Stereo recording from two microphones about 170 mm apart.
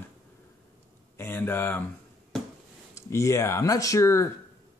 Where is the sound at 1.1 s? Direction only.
10° left (ahead or behind).